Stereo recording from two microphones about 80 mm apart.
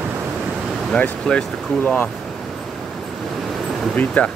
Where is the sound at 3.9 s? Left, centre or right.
Centre.